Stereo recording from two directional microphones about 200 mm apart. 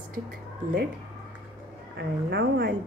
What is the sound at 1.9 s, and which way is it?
Speech, 60° right (ahead or behind).